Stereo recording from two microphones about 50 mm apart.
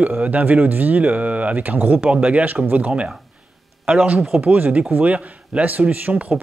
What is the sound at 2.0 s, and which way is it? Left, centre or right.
Speech, right.